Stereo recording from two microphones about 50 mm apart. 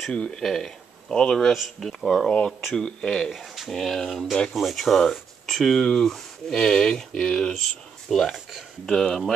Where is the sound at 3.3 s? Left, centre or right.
Centre.